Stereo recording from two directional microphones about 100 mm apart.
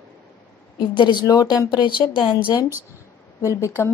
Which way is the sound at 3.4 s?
30° left (ahead or behind).